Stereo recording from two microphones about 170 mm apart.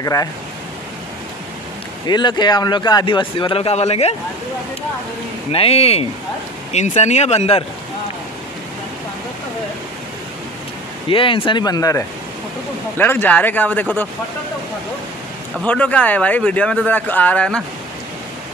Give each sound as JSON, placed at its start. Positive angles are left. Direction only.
{"t": 0.0, "sound": "speech", "side_deg": 20}
{"t": 2.0, "sound": "speech", "side_deg": 25}
{"t": 5.5, "sound": "speech", "side_deg": 35}
{"t": 11.1, "sound": "speech", "side_deg": 30}
{"t": 15.6, "sound": "speech", "side_deg": 10}